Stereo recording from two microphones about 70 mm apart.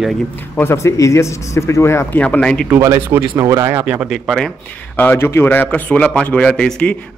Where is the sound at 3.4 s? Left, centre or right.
Right.